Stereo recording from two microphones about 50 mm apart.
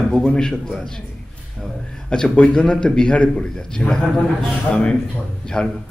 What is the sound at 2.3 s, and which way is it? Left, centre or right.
A man's voice, left.